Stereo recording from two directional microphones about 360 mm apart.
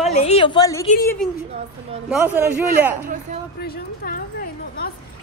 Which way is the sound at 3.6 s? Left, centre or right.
Left.